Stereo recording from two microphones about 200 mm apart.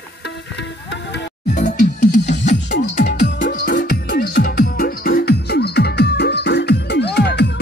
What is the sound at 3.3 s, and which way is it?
Music, 40° left (ahead or behind).